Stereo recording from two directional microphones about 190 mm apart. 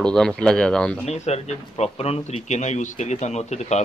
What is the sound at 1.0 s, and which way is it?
A man's voice, 35° left (ahead or behind).